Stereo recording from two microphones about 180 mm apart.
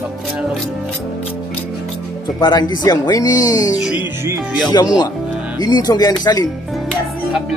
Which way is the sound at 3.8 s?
5° right (ahead or behind).